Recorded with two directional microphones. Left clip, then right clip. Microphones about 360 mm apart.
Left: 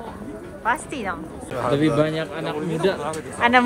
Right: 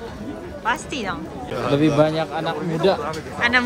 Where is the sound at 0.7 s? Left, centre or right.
Centre.